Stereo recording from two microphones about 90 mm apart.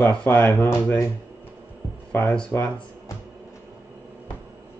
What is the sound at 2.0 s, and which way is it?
Speech, 15° left (ahead or behind).